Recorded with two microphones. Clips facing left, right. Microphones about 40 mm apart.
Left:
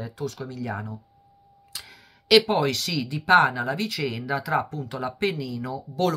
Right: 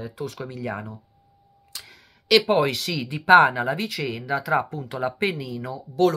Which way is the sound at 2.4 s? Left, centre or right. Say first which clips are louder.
Right 3 dB; centre.